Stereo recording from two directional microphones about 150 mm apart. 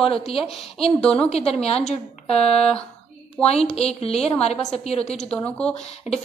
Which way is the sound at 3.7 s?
45° left (ahead or behind).